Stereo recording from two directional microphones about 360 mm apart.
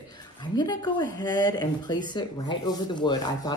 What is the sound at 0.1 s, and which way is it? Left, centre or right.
Speech, centre.